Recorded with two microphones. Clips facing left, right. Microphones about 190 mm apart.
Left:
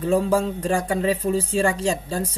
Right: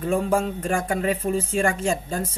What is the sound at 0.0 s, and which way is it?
Speech, 35° left (ahead or behind).